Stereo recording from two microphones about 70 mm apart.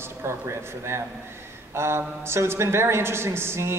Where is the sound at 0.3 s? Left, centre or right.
Right.